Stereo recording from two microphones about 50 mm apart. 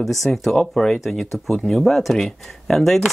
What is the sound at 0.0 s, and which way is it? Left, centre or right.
Speech, centre.